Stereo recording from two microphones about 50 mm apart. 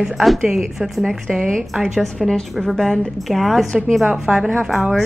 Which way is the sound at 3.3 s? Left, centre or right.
Centre.